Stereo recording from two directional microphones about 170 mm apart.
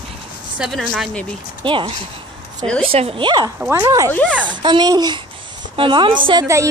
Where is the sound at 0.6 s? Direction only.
Centre (ahead or behind).